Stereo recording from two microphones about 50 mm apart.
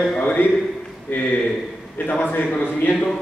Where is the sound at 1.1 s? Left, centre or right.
Left.